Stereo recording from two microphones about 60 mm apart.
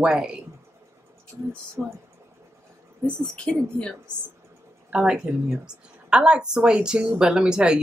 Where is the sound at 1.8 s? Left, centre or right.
Centre.